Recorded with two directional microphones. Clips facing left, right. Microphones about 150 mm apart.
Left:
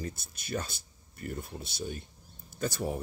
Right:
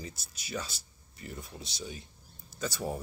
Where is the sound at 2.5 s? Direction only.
55° left (ahead or behind).